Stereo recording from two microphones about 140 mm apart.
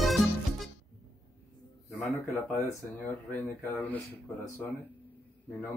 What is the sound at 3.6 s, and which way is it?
Speech, 15° left (ahead or behind).